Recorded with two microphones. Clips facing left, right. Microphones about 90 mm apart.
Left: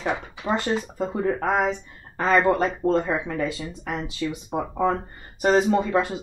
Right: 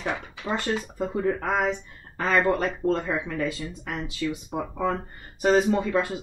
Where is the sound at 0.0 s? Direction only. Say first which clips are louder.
Left 3 dB; 20° left (ahead or behind).